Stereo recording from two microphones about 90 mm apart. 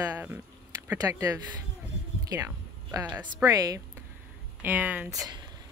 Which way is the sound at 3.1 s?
20° right (ahead or behind).